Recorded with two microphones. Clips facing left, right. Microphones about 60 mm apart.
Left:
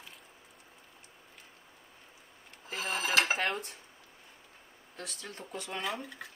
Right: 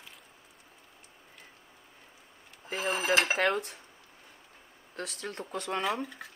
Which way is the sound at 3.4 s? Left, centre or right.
Right.